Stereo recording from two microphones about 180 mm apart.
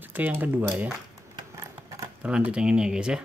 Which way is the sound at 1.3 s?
20° right (ahead or behind).